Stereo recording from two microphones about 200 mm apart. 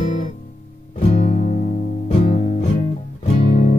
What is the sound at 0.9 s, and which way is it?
Music, 40° left (ahead or behind).